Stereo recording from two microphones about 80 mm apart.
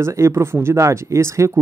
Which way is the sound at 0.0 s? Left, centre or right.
Right.